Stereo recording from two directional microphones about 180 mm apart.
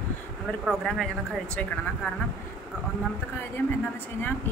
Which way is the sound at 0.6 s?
Centre (ahead or behind).